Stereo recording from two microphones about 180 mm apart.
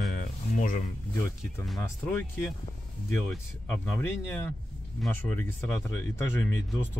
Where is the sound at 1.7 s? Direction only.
10° left (ahead or behind).